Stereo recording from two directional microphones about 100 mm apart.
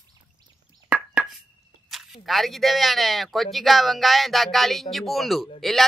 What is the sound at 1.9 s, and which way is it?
Speech, centre (ahead or behind).